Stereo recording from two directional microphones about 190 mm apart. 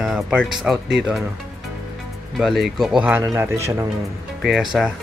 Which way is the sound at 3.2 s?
15° right (ahead or behind).